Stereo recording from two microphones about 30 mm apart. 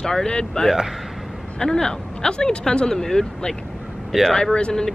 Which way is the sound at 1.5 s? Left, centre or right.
Left.